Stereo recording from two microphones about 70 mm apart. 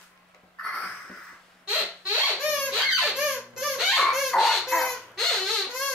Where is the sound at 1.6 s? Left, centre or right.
Right.